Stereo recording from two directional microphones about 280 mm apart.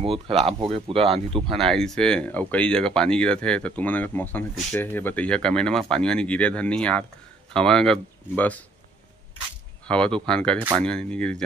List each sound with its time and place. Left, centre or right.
0.0 s speech: right
1.5 s speech: centre
9.8 s speech: centre